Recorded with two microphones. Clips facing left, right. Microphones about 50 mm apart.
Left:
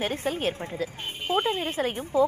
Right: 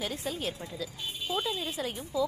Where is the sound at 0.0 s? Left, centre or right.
Left.